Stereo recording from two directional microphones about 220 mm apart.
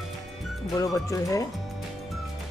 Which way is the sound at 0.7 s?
15° left (ahead or behind).